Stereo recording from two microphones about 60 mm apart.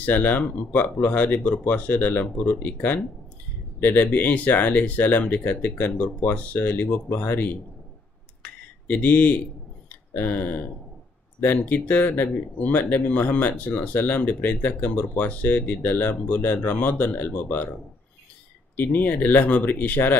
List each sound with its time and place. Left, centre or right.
0.0 s speech: left
8.4 s a sound: left
11.4 s speech: left
18.8 s speech: left